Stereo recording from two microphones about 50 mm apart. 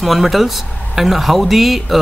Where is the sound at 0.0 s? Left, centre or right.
Centre.